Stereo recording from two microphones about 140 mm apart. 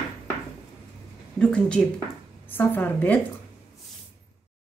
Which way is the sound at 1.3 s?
5° left (ahead or behind).